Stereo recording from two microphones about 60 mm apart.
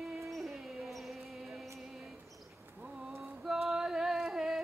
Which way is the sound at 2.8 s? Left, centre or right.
Centre.